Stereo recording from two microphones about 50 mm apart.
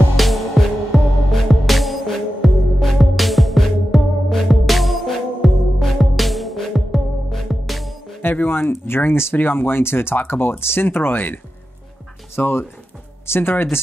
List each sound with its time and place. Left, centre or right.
0.2 s music: centre
8.4 s speech: left
12.4 s speech: left